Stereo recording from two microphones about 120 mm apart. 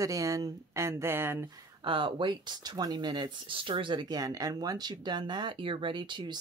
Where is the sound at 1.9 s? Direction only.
45° right (ahead or behind).